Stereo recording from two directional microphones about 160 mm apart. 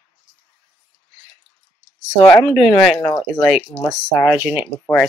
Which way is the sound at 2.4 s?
Centre (ahead or behind).